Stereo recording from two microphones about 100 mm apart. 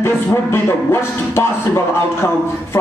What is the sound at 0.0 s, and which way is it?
Speech, 25° left (ahead or behind).